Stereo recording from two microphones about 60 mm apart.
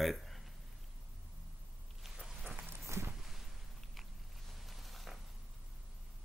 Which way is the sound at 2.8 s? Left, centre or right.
Right.